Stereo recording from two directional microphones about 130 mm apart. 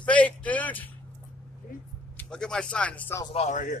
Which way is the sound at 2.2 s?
5° left (ahead or behind).